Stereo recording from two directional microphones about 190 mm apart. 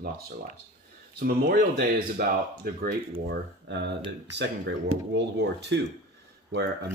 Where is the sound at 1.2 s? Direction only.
50° right (ahead or behind); by 5.8 s 65° right (ahead or behind).